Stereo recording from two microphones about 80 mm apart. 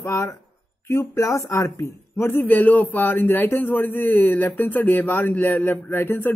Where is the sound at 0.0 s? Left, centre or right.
Left.